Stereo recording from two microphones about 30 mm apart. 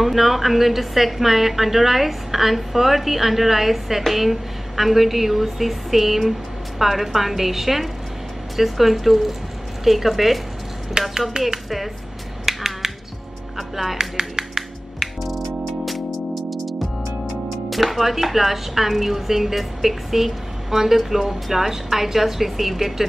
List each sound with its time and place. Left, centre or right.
0.0 s a woman's voice: centre
11.0 s speech: right
12.4 s finger snapping: centre
13.6 s music: centre
13.9 s music: centre
15.2 s music: centre
17.6 s speech: centre